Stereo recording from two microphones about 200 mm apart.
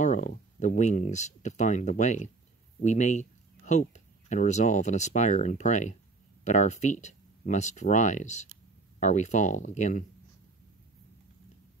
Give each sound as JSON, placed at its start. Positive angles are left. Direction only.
{"t": 0.0, "sound": "speech", "side_deg": 40}